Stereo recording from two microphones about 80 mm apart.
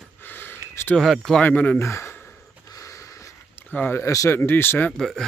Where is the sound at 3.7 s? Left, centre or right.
Left.